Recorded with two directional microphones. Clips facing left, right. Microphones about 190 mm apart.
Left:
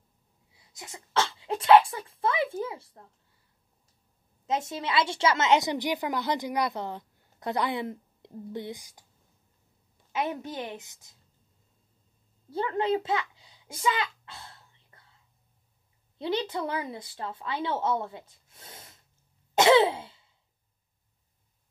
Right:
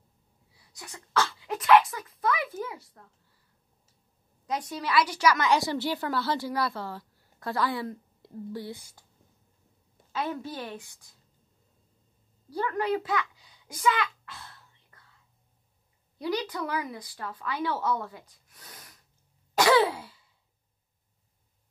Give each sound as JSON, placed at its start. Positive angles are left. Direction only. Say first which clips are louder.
{"t": 0.5, "sound": "speech", "louder": "left 1 dB", "side_deg": 20}
{"t": 4.5, "sound": "a woman's voice", "louder": "left 1 dB", "side_deg": 25}
{"t": 10.1, "sound": "a woman's voice", "louder": "left 1 dB", "side_deg": 20}
{"t": 12.4, "sound": "a sound", "louder": "left 1 dB", "side_deg": 25}
{"t": 16.2, "sound": "a woman's voice", "louder": "left 1 dB", "side_deg": 25}
{"t": 19.5, "sound": "throat clearing", "louder": "left 2 dB", "side_deg": 25}